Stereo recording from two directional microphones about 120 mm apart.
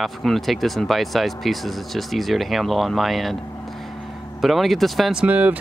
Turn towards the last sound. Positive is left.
turn(degrees=-15)  # may be behind; listen again after turning